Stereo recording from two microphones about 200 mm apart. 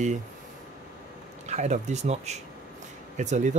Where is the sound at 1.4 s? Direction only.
35° right (ahead or behind).